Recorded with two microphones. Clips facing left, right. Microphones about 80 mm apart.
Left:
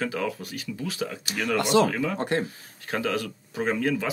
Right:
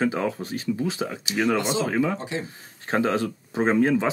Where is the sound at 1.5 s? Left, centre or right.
Left.